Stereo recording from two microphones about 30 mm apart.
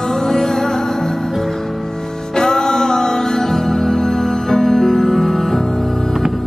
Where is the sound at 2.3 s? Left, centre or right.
Centre.